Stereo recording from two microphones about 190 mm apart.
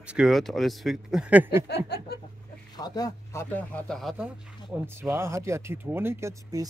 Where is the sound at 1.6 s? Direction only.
60° left (ahead or behind).